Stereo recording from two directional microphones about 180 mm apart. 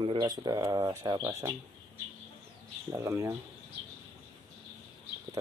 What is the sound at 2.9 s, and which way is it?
Speech, 15° right (ahead or behind).